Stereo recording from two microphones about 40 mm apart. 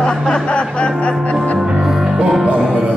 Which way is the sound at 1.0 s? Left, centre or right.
Left.